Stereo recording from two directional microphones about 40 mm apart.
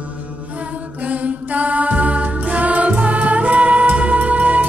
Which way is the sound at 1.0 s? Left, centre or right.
Right.